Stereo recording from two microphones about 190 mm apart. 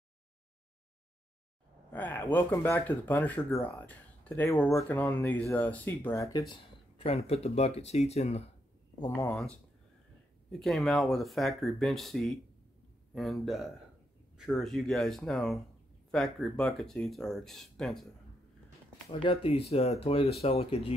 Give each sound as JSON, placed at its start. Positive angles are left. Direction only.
{"t": 1.9, "sound": "speech", "side_deg": 10}
{"t": 6.5, "sound": "speech", "side_deg": 30}
{"t": 9.0, "sound": "speech", "side_deg": 15}
{"t": 9.3, "sound": "speech", "side_deg": 5}
{"t": 10.6, "sound": "speech", "side_deg": 0}
{"t": 19.0, "sound": "speech", "side_deg": 30}